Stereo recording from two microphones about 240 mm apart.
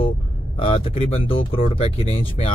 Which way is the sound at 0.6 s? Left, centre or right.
Left.